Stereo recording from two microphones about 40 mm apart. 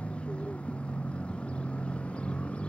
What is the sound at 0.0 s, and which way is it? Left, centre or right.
Vehicle, left.